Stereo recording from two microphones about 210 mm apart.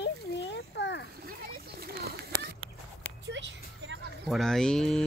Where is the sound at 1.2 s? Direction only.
45° right (ahead or behind).